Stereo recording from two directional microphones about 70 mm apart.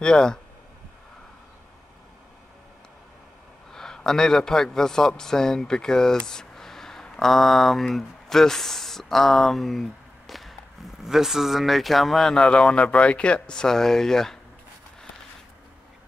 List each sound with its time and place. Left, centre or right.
0.0 s speech: centre
3.7 s a man's voice: centre